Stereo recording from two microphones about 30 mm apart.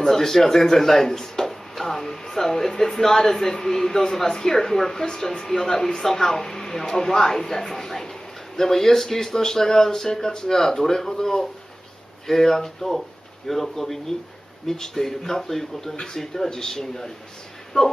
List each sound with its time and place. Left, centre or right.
0.0 s speech: centre
5.0 s speech: left
17.8 s speech: left